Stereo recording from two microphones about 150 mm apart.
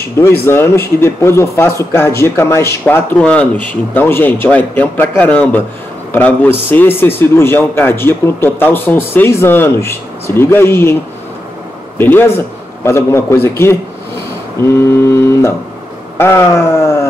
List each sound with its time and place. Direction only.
0.5 s speech: 15° left (ahead or behind)
12.0 s speech: 15° left (ahead or behind)
14.7 s a sound: 20° left (ahead or behind)
16.2 s speech: 15° left (ahead or behind)